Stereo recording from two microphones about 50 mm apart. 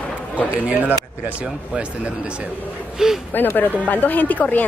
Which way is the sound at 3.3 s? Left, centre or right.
Left.